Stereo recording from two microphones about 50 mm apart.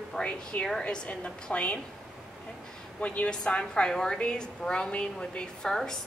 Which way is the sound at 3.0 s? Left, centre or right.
Left.